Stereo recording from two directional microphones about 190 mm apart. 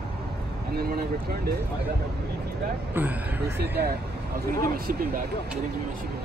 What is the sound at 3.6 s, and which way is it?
Speech, 60° right (ahead or behind).